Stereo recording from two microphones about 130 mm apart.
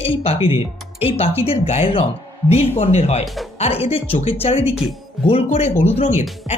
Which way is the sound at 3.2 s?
Centre (ahead or behind).